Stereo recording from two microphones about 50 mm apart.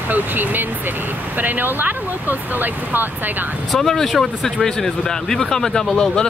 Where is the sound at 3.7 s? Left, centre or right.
Centre.